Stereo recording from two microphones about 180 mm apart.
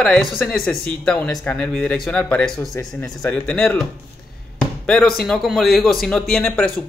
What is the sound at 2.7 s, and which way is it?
Speech, 20° left (ahead or behind).